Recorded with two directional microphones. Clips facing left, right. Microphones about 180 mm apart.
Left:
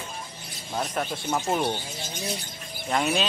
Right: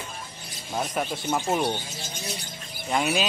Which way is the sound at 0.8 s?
5° right (ahead or behind).